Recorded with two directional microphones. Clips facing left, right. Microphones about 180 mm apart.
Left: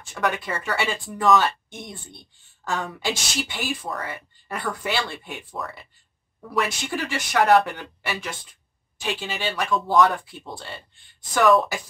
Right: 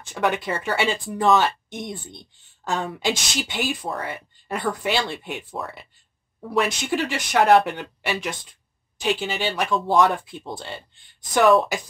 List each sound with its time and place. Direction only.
0.0 s speech: 20° right (ahead or behind)